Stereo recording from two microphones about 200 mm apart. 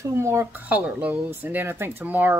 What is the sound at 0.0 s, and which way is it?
Speech, 15° right (ahead or behind).